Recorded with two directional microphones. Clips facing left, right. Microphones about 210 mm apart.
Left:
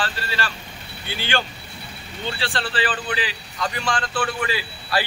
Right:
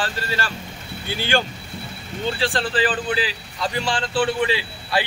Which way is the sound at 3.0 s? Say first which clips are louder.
Right 3 dB; 30° right (ahead or behind).